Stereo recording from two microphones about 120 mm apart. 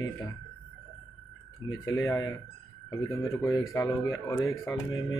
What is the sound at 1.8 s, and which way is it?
Speech, 30° left (ahead or behind).